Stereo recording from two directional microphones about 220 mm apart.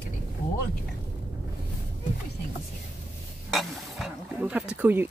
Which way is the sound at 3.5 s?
Centre (ahead or behind).